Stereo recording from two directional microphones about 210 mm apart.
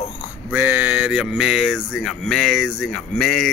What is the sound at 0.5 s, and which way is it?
Speech, 10° right (ahead or behind).